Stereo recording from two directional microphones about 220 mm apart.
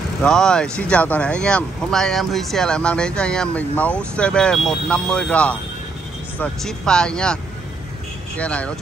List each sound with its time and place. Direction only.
0.2 s speech: 5° left (ahead or behind)
8.4 s speech: 5° left (ahead or behind)